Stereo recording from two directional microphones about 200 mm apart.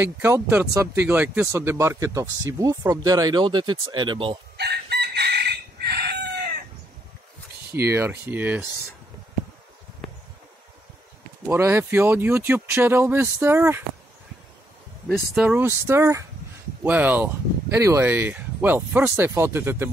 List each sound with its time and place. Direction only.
0.0 s speech: 10° right (ahead or behind)
4.6 s chicken: 55° right (ahead or behind)
7.9 s speech: 10° right (ahead or behind)
11.4 s speech: 10° right (ahead or behind)
15.0 s speech: 5° right (ahead or behind)